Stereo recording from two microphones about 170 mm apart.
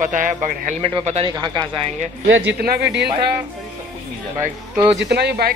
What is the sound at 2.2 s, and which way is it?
Speech, 90° right.